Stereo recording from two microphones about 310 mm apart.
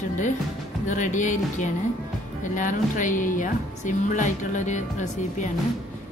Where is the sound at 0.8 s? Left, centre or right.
Left.